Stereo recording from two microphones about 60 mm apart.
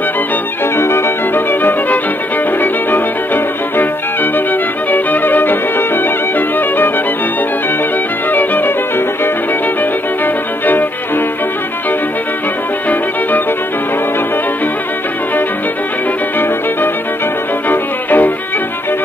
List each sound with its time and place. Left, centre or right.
0.7 s music: left
4.9 s violin: left
8.3 s violin: left
17.6 s violin: left